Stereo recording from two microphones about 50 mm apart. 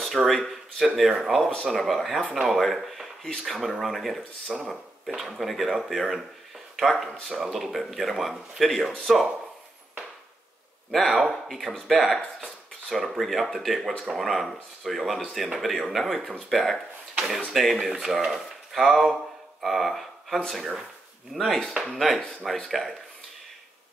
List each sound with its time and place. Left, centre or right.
0.0 s speech: centre
10.9 s speech: centre